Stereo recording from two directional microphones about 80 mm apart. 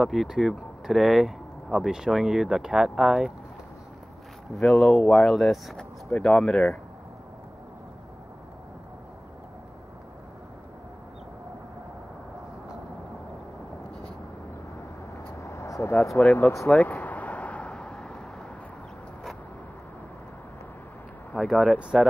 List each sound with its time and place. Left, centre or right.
0.0 s speech: centre
4.6 s speech: centre
15.3 s vehicle: left
16.2 s speech: centre
16.7 s a sound: centre
21.4 s speech: centre